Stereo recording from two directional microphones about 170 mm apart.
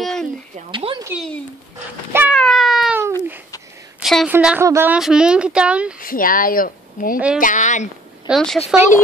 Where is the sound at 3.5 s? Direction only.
20° left (ahead or behind).